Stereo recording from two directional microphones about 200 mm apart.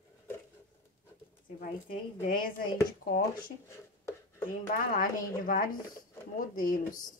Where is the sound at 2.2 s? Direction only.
45° left (ahead or behind).